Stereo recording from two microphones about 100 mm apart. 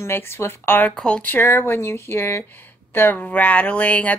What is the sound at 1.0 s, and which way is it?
Speech, 10° left (ahead or behind).